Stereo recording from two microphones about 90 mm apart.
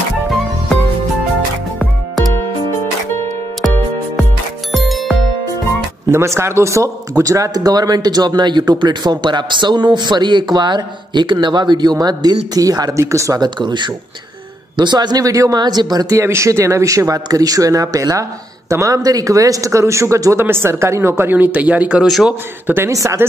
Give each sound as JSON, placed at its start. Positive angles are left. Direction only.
{"t": 4.7, "sound": "music", "side_deg": 0}
{"t": 6.0, "sound": "a man's voice", "side_deg": -30}
{"t": 13.4, "sound": "a man's voice", "side_deg": -55}
{"t": 15.6, "sound": "a man's voice", "side_deg": -50}
{"t": 16.2, "sound": "a man's voice", "side_deg": -30}
{"t": 22.0, "sound": "a man's voice", "side_deg": 0}
{"t": 22.8, "sound": "a man's voice", "side_deg": -35}